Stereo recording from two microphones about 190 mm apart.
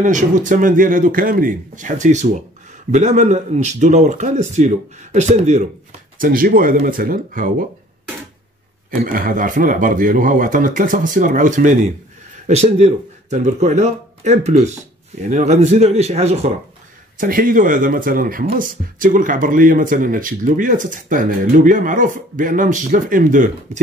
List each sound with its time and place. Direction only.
0.0 s speech: 40° right (ahead or behind)
6.1 s speech: 50° right (ahead or behind)
8.9 s speech: 45° right (ahead or behind)
17.2 s speech: 50° right (ahead or behind)